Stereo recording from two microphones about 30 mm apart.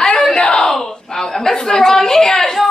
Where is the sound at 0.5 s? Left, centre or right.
Centre.